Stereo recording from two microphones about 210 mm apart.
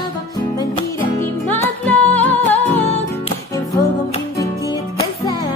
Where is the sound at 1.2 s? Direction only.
10° left (ahead or behind).